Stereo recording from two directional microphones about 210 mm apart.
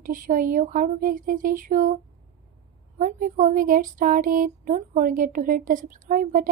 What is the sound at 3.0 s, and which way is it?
Speech, 40° right (ahead or behind).